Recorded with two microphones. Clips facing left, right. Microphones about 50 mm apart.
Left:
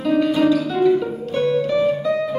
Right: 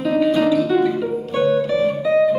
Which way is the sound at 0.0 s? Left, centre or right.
Centre.